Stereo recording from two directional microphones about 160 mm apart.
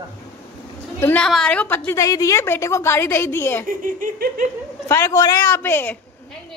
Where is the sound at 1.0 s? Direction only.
10° left (ahead or behind).